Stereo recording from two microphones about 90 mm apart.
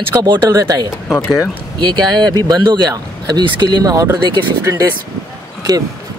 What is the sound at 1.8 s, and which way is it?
Speech, 50° right (ahead or behind).